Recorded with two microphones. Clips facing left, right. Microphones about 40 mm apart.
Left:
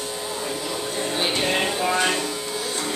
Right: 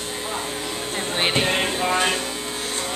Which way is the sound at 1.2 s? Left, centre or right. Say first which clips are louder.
Right 3 dB; right.